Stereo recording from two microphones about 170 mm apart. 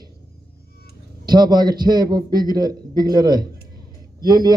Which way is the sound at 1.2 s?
25° right (ahead or behind).